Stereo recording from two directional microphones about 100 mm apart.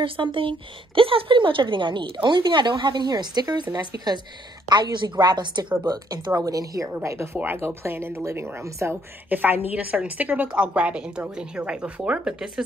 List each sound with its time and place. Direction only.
0.0 s a woman's voice: 60° right (ahead or behind); by 8.9 s 30° right (ahead or behind)
9.3 s a woman's voice: 20° right (ahead or behind)